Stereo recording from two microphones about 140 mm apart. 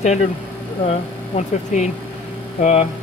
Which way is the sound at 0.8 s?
50° left (ahead or behind).